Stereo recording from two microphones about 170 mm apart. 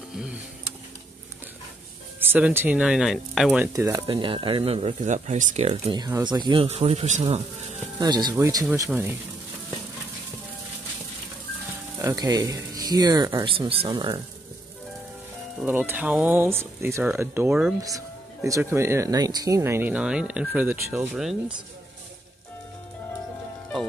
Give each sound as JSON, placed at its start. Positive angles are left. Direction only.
{"t": 0.1, "sound": "a sound", "side_deg": -5}
{"t": 2.1, "sound": "speech", "side_deg": -10}
{"t": 3.6, "sound": "speech", "side_deg": -15}
{"t": 4.1, "sound": "speech", "side_deg": -30}
{"t": 5.9, "sound": "speech", "side_deg": -25}
{"t": 8.0, "sound": "speech", "side_deg": -25}
{"t": 12.0, "sound": "speech", "side_deg": -20}
{"t": 15.6, "sound": "speech", "side_deg": -10}
{"t": 17.8, "sound": "speech", "side_deg": -20}